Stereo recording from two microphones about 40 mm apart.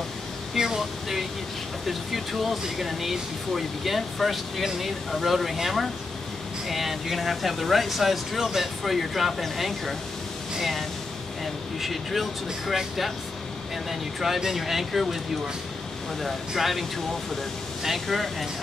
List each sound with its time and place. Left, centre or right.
0.6 s a sound: centre
1.9 s speech: centre
16.2 s speech: centre
17.8 s speech: centre